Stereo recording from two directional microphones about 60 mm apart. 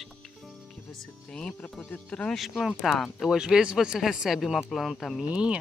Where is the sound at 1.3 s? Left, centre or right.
Centre.